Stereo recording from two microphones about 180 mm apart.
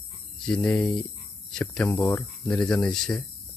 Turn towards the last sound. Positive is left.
turn(degrees=5)  # may be behind; listen again after turning